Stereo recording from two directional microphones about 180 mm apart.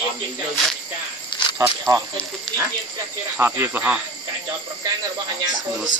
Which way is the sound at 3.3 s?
10° right (ahead or behind).